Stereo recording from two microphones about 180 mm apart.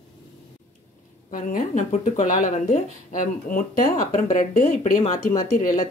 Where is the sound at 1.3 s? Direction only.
45° left (ahead or behind).